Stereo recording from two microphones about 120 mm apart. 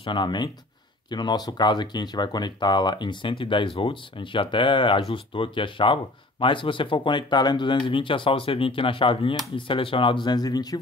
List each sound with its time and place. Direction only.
0.0 s speech: 40° left (ahead or behind)